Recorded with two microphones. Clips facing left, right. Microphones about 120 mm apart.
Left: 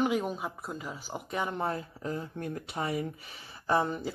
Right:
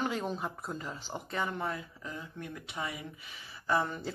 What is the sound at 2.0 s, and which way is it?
Speech, 40° left (ahead or behind).